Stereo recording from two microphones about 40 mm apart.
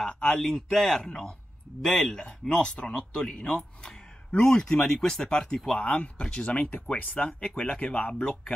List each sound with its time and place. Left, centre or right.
0.1 s a sound: centre
0.4 s a man's voice: centre
5.9 s speech: left